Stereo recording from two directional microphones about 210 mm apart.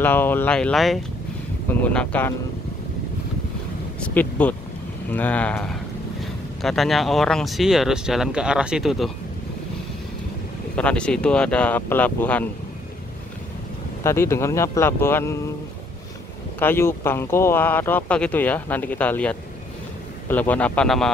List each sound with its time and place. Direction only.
0.0 s speech: 10° left (ahead or behind)
4.0 s speech: 10° left (ahead or behind)
10.8 s speech: 5° left (ahead or behind)
14.0 s speech: 15° left (ahead or behind)
16.5 s speech: 10° left (ahead or behind)